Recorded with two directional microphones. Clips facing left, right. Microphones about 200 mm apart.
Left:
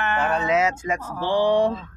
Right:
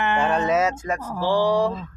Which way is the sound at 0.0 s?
15° right (ahead or behind).